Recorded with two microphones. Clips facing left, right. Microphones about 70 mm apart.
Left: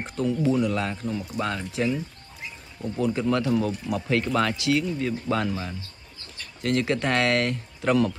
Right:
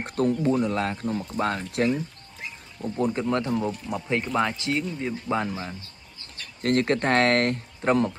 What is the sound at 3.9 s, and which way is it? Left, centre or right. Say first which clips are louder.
Speech: left 2 dB; centre.